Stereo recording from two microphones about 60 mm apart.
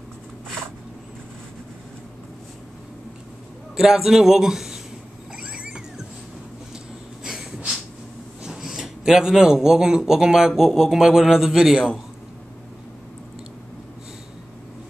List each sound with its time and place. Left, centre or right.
3.7 s speech: centre
5.3 s a sound: centre
7.2 s snort: centre
8.5 s speech: centre